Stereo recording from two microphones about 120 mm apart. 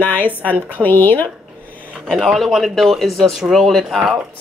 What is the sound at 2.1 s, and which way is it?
Speech, centre (ahead or behind).